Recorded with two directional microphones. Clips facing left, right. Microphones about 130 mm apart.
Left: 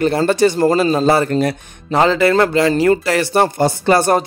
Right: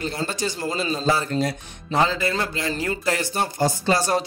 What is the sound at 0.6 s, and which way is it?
Speech, 50° left (ahead or behind).